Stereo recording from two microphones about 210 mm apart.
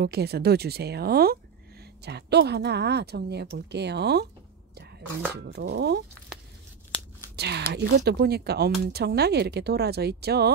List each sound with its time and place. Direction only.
0.0 s speech: 50° right (ahead or behind)
5.3 s speech: 50° right (ahead or behind)
7.3 s speech: 55° right (ahead or behind)